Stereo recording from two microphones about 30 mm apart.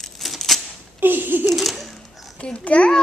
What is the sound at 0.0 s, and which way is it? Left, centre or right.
Typewriter, centre.